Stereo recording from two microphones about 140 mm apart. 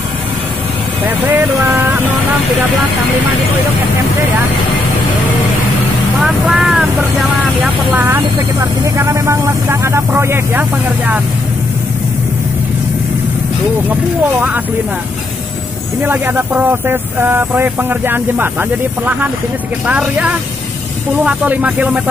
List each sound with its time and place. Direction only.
1.0 s speech: 15° right (ahead or behind)
6.2 s speech: 5° right (ahead or behind)
7.9 s speech: 20° right (ahead or behind)
16.0 s speech: 15° right (ahead or behind)